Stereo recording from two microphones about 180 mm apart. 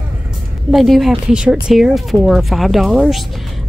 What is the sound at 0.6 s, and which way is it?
A woman's voice, centre (ahead or behind).